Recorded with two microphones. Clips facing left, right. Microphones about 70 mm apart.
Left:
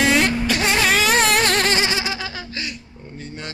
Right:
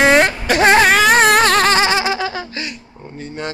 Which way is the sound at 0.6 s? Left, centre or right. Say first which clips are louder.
Right 10 dB; right.